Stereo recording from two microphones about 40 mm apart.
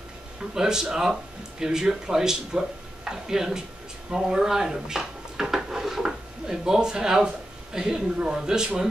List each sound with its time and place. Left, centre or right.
0.6 s speech: centre